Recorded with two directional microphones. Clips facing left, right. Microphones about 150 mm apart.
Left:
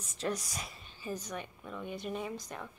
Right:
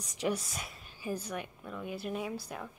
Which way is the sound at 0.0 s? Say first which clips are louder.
Right 3 dB; 15° right (ahead or behind).